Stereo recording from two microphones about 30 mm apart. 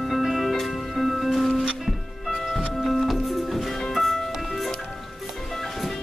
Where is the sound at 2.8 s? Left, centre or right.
Centre.